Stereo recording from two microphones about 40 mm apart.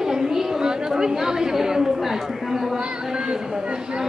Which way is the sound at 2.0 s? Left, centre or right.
Centre.